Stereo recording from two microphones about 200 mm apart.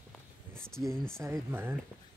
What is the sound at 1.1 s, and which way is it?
Speech, 10° right (ahead or behind).